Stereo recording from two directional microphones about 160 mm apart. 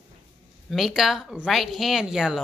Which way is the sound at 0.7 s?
Centre (ahead or behind).